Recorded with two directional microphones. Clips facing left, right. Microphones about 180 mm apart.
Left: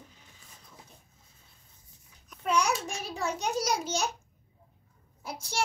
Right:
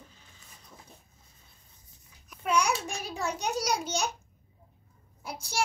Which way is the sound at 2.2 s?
Centre (ahead or behind).